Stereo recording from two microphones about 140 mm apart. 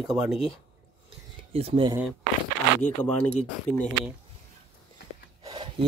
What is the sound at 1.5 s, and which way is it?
Speech, 45° right (ahead or behind).